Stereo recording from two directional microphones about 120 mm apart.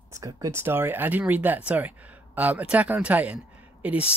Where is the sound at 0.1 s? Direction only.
30° right (ahead or behind).